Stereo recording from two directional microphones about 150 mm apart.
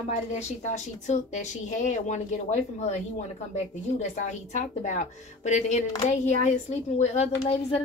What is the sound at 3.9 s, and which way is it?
A woman's voice, 50° left (ahead or behind).